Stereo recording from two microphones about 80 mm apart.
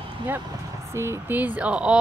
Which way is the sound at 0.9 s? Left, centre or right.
Right.